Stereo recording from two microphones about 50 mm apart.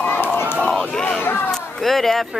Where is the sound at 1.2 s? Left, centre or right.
Left.